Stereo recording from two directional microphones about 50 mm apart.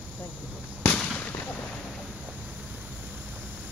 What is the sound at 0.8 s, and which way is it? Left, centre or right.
Fireworks, left.